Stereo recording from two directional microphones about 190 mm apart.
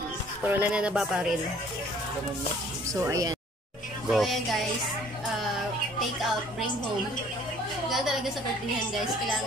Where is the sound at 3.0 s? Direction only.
15° right (ahead or behind).